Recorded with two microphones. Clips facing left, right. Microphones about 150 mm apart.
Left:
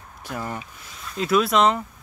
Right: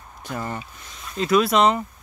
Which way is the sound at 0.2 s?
5° left (ahead or behind).